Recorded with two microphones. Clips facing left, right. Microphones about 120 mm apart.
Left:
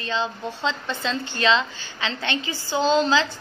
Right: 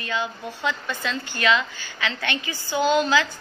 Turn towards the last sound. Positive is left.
turn(degrees=25)  # may be behind; listen again after turning